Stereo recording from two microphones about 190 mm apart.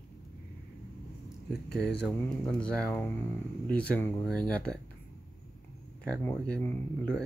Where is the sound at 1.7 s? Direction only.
60° left (ahead or behind).